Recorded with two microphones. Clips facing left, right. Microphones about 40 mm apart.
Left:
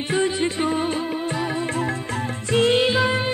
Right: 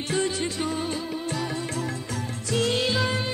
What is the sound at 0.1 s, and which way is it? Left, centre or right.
Music, left.